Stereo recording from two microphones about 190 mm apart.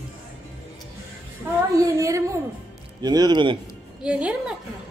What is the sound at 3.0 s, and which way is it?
Speech, 20° right (ahead or behind).